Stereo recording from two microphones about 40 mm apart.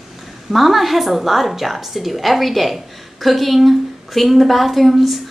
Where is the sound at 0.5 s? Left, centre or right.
Centre.